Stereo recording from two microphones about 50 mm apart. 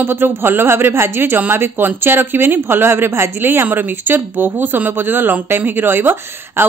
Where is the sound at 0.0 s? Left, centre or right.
Right.